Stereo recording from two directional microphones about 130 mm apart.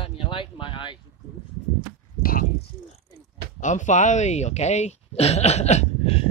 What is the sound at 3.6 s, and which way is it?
Speech, 75° left (ahead or behind).